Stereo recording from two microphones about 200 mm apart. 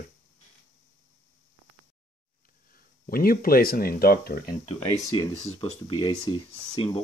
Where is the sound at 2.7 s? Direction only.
45° left (ahead or behind).